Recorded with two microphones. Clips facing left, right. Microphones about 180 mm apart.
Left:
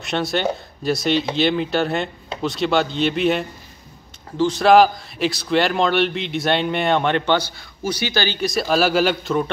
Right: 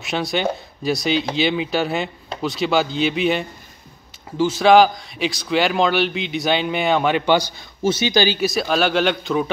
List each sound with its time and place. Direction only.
0.0 s speech: centre (ahead or behind)
7.8 s speech: 20° right (ahead or behind)
8.4 s speech: centre (ahead or behind)